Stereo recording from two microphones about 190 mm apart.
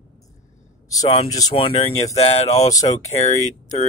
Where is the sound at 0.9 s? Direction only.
20° left (ahead or behind); by 3.9 s 35° left (ahead or behind).